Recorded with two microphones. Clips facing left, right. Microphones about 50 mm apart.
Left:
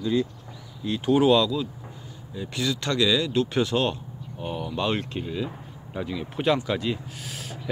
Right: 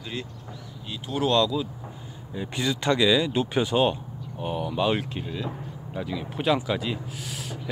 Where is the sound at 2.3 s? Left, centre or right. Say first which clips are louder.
Even; centre.